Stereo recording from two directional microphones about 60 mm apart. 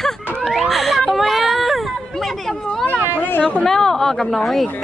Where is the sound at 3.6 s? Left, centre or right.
Centre.